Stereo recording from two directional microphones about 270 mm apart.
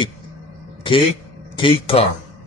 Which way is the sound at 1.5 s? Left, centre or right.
Centre.